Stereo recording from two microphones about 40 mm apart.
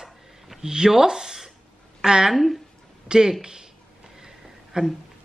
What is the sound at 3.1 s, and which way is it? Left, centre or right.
Speech, centre.